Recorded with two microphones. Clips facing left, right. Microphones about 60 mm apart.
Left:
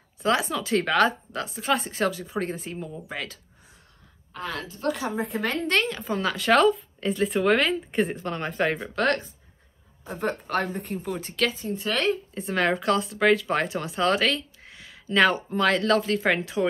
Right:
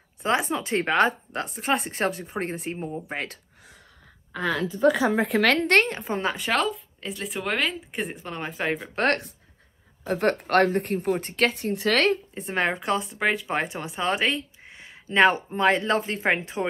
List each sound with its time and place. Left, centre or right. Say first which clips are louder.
0.2 s speech: even; right
5.3 s a woman's voice: right 6 dB; right
5.9 s speech: even; right
6.5 s a woman's voice: left 9 dB; centre
8.0 s speech: left 4 dB; centre
8.8 s speech: even; right
10.0 s speech: right 5 dB; right
11.1 s speech: even; right
12.4 s speech: left 1 dB; right